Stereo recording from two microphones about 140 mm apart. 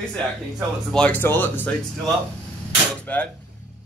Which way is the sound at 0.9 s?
10° left (ahead or behind).